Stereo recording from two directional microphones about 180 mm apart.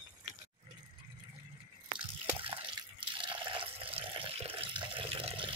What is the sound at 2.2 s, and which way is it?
Water, 30° right (ahead or behind).